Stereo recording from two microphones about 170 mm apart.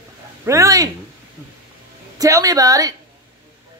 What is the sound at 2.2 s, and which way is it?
Speech, 20° right (ahead or behind).